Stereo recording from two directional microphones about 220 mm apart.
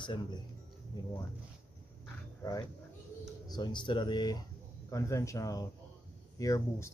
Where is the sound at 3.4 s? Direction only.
20° left (ahead or behind).